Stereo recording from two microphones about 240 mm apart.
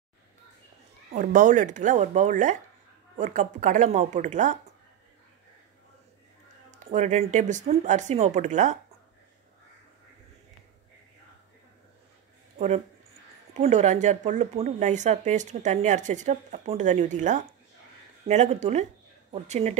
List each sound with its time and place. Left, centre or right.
1.1 s speech: right
6.9 s speech: right
12.5 s a woman's voice: right